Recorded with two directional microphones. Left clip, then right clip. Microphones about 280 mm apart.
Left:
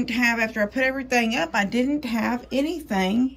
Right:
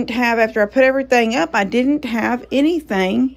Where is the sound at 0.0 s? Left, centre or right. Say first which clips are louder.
Right 6 dB; centre.